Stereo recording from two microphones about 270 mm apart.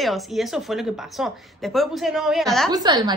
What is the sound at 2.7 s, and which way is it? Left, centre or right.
Speech, centre.